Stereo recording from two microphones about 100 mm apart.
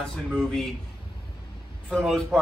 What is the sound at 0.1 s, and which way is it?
Speech, 5° left (ahead or behind).